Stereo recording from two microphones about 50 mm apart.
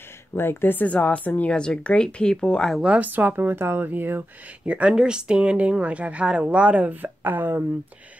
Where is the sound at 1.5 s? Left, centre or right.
Centre.